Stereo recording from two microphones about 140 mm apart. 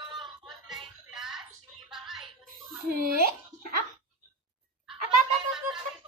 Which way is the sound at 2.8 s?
90° right.